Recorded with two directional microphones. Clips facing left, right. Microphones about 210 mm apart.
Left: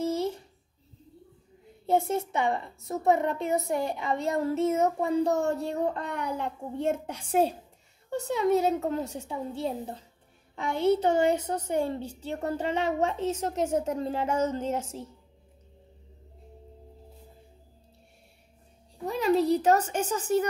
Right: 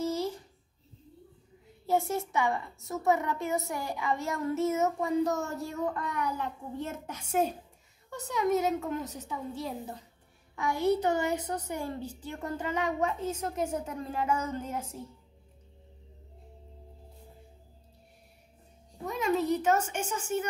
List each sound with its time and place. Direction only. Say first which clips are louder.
0.0 s a sound: left 3 dB; 60° left (ahead or behind)
1.9 s a woman's voice: left 3 dB; 25° left (ahead or behind)
19.0 s a woman's voice: left 4 dB; 35° left (ahead or behind)